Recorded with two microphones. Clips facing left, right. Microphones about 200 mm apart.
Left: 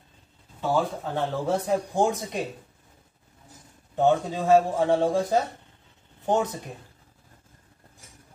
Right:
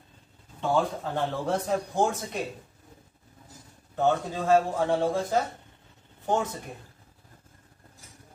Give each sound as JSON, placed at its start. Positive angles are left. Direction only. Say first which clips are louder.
{"t": 0.6, "sound": "speech", "louder": "left 1 dB", "side_deg": 0}
{"t": 2.0, "sound": "a man's voice", "louder": "left 2 dB", "side_deg": 15}
{"t": 3.9, "sound": "a man's voice", "louder": "left 3 dB", "side_deg": 15}